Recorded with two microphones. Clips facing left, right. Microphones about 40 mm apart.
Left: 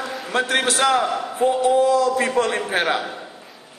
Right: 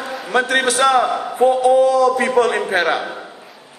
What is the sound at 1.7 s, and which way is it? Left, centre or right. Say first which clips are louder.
A man's voice: right 3 dB; right.